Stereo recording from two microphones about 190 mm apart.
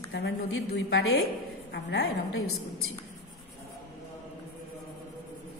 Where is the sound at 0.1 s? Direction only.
60° left (ahead or behind).